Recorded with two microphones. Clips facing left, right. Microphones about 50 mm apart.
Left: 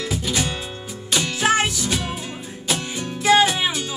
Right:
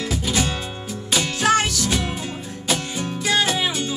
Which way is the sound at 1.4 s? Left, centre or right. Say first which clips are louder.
Right 1 dB; centre.